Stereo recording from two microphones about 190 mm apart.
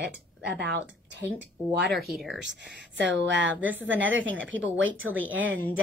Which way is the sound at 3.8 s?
85° right.